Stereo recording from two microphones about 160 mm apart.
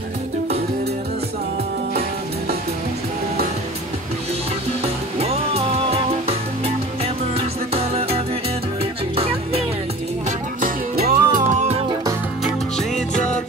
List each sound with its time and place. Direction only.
4.8 s music: 40° right (ahead or behind)
7.3 s music: 40° right (ahead or behind)
10.6 s music: 65° right (ahead or behind)